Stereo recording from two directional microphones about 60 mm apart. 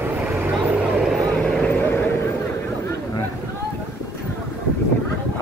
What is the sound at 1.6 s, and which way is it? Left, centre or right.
Vehicle, left.